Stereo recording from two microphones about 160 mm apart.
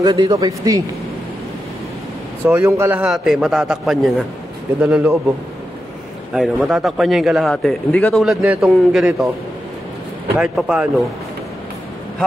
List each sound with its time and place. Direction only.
0.0 s speech: 25° right (ahead or behind)
2.4 s a man's voice: 15° right (ahead or behind)
6.3 s a man's voice: centre (ahead or behind)
10.4 s a man's voice: 5° right (ahead or behind)